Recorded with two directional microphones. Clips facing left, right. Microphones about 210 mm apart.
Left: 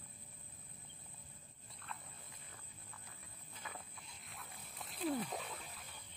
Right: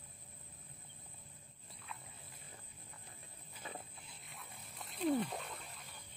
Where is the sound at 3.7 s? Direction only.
30° right (ahead or behind).